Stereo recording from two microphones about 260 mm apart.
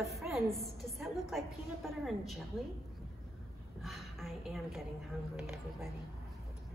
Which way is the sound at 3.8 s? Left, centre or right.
Centre.